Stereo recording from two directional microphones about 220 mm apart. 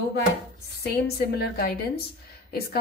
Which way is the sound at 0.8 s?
45° left (ahead or behind).